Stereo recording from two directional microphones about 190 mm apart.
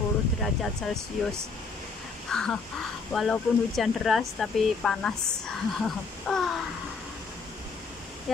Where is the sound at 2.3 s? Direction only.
5° left (ahead or behind).